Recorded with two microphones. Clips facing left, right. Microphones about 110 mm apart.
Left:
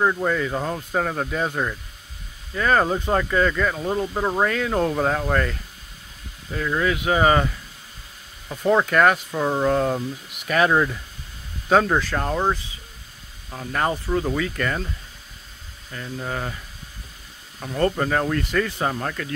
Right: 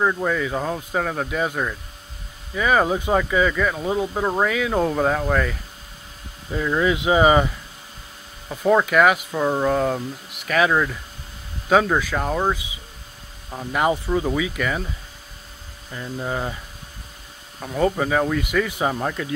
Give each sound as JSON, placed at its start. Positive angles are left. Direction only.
{"t": 0.0, "sound": "speech", "side_deg": 5}
{"t": 6.5, "sound": "speech", "side_deg": -15}
{"t": 8.5, "sound": "speech", "side_deg": -5}
{"t": 15.9, "sound": "speech", "side_deg": -15}
{"t": 17.6, "sound": "speech", "side_deg": -5}